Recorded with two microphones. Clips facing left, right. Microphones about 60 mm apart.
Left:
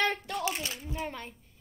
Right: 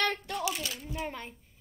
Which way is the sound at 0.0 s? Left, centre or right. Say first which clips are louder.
Left 1 dB; centre.